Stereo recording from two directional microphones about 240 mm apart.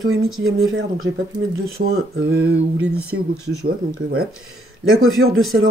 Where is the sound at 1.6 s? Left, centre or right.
Right.